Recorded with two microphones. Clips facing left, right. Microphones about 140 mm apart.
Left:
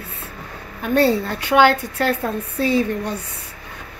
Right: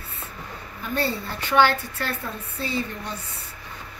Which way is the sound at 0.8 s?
65° left (ahead or behind).